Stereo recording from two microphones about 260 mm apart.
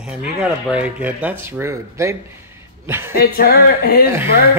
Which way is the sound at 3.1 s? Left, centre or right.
Left.